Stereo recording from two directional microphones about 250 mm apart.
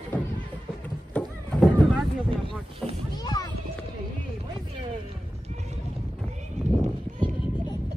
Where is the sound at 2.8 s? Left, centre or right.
Centre.